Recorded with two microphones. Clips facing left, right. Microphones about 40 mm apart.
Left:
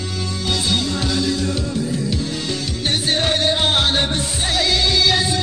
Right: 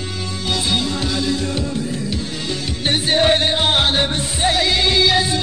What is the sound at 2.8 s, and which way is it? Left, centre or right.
Music, centre.